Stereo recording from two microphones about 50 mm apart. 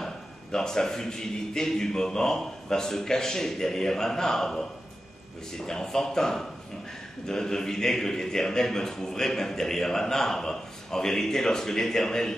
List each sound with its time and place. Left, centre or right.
0.0 s a man's voice: centre
5.7 s a man's voice: centre